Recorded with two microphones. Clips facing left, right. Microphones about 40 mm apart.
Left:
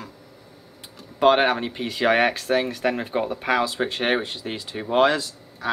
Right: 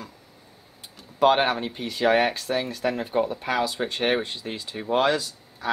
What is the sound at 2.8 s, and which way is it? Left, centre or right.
Speech, left.